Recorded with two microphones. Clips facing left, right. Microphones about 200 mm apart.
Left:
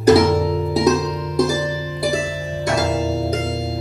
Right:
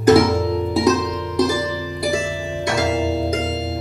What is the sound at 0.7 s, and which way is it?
Music, 40° left (ahead or behind).